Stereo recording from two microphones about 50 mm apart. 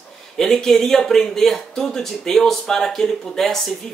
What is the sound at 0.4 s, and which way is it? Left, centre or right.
Speech, centre.